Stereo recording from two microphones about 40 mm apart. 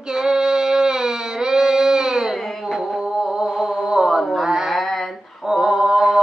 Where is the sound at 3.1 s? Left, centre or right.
Centre.